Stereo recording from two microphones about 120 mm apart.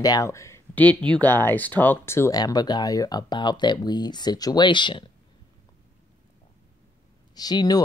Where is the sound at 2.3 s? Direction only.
35° left (ahead or behind).